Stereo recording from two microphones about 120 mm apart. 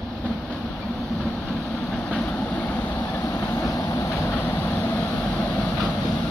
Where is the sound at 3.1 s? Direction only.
25° left (ahead or behind).